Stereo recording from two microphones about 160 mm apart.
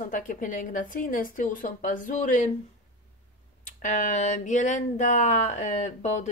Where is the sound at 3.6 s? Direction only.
50° left (ahead or behind).